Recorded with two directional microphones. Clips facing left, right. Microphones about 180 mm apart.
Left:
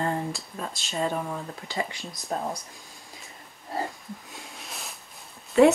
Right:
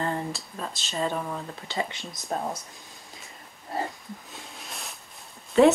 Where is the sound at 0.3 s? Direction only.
Centre (ahead or behind).